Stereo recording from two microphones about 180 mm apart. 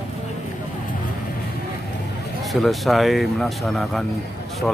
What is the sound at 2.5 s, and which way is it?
Speech, centre (ahead or behind).